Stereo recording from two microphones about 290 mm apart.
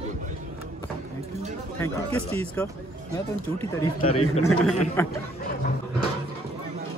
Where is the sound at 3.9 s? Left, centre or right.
Left.